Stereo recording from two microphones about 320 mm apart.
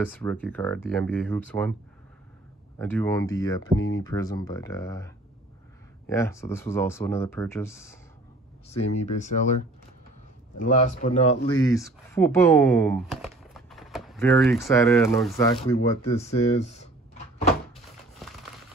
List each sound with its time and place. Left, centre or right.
0.0 s speech: centre
2.8 s speech: centre
8.6 s a man's voice: left
10.6 s a man's voice: left